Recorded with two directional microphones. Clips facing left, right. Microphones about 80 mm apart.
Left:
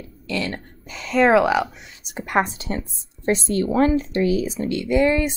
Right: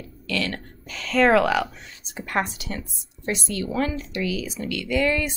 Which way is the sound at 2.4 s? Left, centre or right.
Left.